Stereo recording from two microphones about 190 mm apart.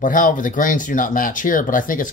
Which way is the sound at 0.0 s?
45° left (ahead or behind).